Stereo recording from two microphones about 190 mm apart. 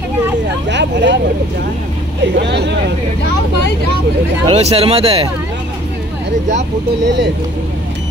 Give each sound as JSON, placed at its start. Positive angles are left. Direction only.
{"t": 0.7, "sound": "speech", "side_deg": -65}
{"t": 2.3, "sound": "speech", "side_deg": -65}
{"t": 4.5, "sound": "speech", "side_deg": -35}